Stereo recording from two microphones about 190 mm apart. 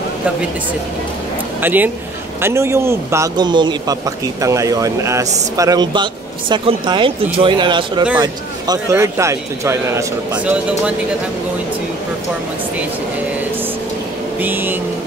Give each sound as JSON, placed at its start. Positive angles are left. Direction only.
{"t": 1.6, "sound": "a man's voice", "side_deg": -10}
{"t": 14.4, "sound": "a man's voice", "side_deg": -10}